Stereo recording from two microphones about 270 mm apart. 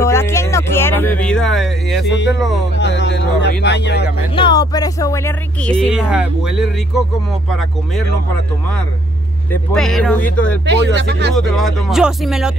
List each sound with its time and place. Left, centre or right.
0.0 s music: centre
2.0 s speech: left
4.4 s speech: centre
9.5 s speech: centre
10.6 s speech: right
11.3 s speech: centre